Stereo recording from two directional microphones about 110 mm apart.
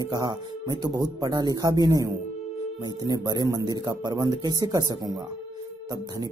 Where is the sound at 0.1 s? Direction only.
35° right (ahead or behind).